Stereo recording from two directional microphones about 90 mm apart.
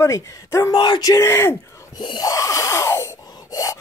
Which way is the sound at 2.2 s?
40° left (ahead or behind).